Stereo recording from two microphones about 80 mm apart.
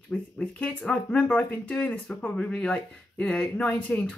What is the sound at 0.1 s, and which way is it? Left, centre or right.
A woman's voice, centre.